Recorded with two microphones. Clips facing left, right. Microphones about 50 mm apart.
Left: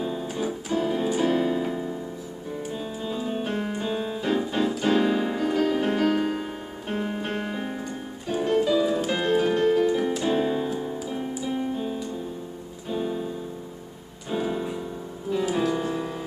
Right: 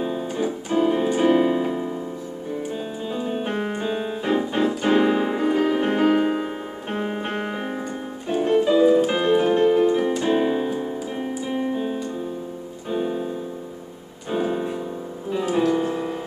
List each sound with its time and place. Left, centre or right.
0.0 s music: centre
0.7 s keyboard: right
2.7 s music: centre
3.5 s keyboard: right
10.2 s music: right
11.4 s keyboard: right
12.9 s piano: centre
14.3 s piano: centre
15.7 s music: centre